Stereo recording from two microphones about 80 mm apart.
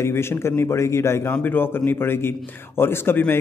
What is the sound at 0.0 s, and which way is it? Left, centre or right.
A man's voice, left.